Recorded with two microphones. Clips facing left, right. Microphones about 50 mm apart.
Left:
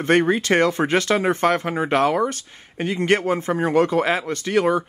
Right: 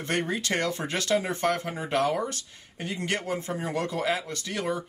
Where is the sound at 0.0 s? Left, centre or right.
Left.